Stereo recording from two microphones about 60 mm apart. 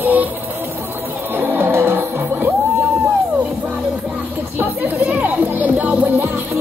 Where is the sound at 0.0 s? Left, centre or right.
Right.